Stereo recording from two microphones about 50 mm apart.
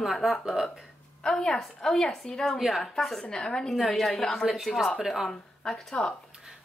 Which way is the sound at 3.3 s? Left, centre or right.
Centre.